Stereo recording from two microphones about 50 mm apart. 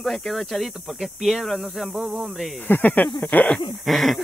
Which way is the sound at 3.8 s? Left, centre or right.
Centre.